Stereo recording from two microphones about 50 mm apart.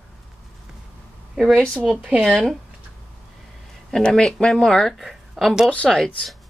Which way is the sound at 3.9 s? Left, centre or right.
Centre.